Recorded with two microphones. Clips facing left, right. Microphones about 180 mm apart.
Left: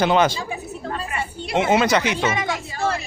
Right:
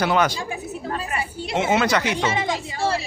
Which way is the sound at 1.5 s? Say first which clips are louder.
Left 2 dB; 20° left (ahead or behind).